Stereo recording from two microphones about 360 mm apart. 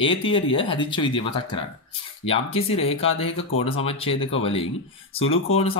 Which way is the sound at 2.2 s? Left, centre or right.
Centre.